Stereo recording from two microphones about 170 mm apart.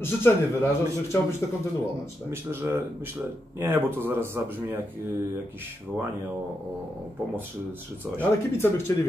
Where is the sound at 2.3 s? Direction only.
15° right (ahead or behind).